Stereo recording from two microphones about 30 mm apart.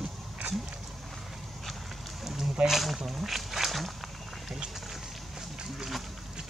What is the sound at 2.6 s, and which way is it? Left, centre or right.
Speech, centre.